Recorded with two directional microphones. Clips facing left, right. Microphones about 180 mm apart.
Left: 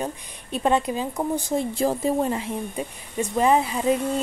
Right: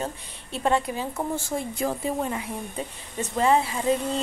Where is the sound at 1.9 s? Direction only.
35° left (ahead or behind).